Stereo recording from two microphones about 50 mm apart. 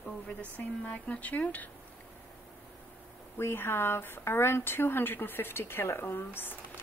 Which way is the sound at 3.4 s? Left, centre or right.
Left.